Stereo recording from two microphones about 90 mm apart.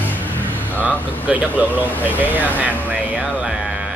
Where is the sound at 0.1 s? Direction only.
20° left (ahead or behind).